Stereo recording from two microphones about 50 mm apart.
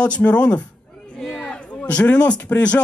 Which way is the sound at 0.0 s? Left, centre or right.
Left.